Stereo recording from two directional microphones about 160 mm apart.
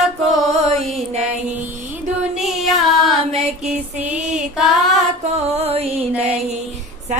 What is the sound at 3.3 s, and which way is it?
Music, 40° right (ahead or behind).